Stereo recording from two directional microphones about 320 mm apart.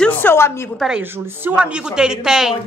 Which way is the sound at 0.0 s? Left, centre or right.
Centre.